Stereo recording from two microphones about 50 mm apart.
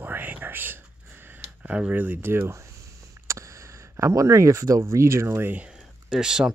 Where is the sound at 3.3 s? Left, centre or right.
Right.